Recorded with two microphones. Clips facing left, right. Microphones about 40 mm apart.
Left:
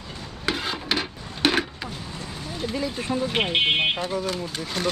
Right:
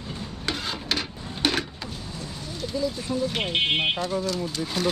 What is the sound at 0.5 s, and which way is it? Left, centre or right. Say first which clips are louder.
Rub: left 3 dB; centre.